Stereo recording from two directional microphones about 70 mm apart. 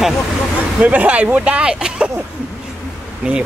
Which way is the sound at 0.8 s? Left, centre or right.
Centre.